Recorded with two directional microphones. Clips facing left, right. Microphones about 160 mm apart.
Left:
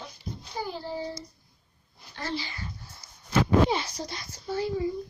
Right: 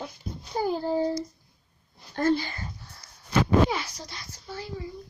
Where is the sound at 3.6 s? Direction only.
20° left (ahead or behind).